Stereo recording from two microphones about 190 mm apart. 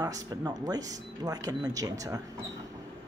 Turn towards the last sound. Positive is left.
turn(degrees=-20)  # may be behind; listen again after turning